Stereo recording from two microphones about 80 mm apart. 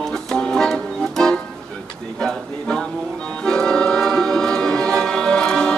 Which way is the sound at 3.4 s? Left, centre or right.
Centre.